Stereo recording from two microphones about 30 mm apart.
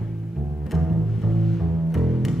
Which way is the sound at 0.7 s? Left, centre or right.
Centre.